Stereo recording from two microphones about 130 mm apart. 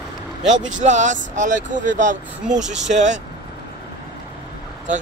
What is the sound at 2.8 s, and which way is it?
Speech, 70° right (ahead or behind).